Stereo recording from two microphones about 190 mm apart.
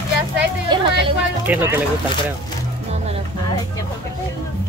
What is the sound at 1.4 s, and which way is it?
Speech, 10° right (ahead or behind).